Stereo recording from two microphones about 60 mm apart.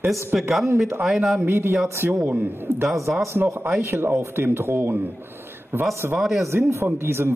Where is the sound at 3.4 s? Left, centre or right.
Right.